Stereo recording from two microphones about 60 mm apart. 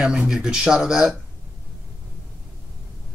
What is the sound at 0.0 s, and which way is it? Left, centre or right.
Speech, centre.